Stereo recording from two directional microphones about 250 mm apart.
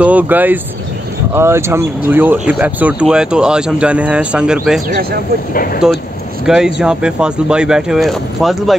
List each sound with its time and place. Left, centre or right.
0.0 s speech: centre
5.5 s speech: left
6.4 s speech: centre